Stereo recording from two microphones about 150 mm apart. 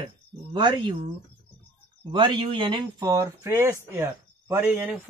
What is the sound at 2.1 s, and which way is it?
Speech, 35° right (ahead or behind).